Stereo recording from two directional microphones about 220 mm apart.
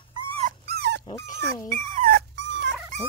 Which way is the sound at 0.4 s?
40° right (ahead or behind).